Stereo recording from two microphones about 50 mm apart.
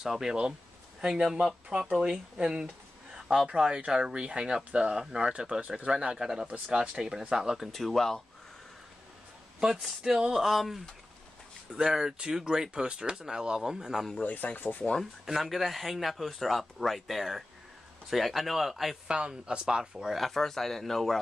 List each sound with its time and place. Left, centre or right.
0.0 s speech: centre
7.5 s speech: centre
9.6 s speech: centre
10.4 s speech: centre
14.2 s speech: left
15.2 s speech: centre
19.0 s speech: centre
20.2 s speech: centre